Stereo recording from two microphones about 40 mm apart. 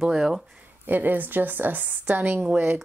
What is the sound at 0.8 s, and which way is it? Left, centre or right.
A woman's voice, right.